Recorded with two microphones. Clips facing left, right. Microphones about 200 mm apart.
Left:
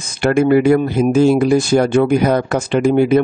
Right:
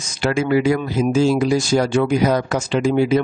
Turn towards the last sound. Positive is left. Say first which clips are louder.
# left 4 dB
turn(degrees=55)  # may be behind; listen again after turning